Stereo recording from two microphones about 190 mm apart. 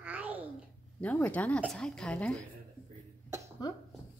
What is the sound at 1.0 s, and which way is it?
A woman's voice, 10° left (ahead or behind).